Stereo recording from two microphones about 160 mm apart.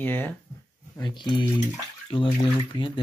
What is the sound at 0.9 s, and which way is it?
Speech, 30° left (ahead or behind).